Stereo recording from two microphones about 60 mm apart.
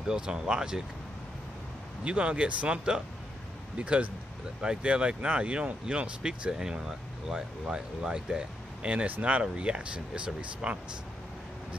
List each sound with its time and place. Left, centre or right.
0.0 s speech: centre
2.0 s speech: centre